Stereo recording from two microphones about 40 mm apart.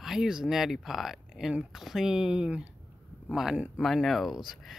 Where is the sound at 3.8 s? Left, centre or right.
Centre.